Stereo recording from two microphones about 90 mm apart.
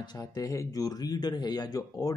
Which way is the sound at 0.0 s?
50° left (ahead or behind).